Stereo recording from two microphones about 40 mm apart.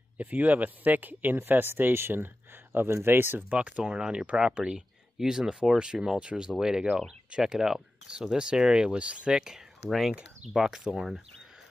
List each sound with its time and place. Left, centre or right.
0.2 s speech: right
3.5 s speech: right
9.5 s speech: centre
11.0 s speech: centre